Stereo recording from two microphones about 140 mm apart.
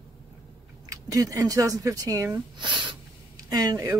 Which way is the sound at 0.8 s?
25° right (ahead or behind).